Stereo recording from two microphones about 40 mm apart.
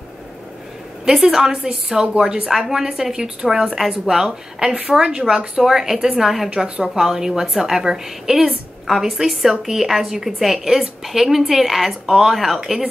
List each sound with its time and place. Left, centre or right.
1.0 s a woman's voice: centre
2.5 s a woman's voice: centre
4.6 s a woman's voice: right; by 12.8 s centre